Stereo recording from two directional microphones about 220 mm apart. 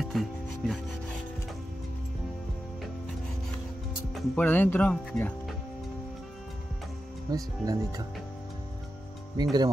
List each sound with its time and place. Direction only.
0.0 s rub: centre (ahead or behind)
4.1 s speech: 5° left (ahead or behind)
7.2 s speech: 15° right (ahead or behind)
9.4 s speech: 20° right (ahead or behind)